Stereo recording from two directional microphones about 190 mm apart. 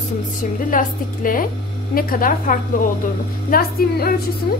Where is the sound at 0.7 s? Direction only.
45° left (ahead or behind).